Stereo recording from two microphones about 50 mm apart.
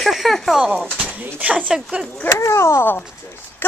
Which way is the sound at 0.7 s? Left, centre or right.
Right.